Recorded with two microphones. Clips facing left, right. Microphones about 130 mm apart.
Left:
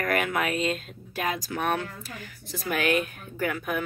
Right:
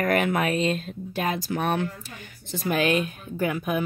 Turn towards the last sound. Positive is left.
turn(degrees=-20)  # may be behind; listen again after turning